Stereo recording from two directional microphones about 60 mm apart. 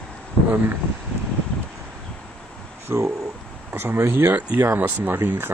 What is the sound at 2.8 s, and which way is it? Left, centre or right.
Speech, right.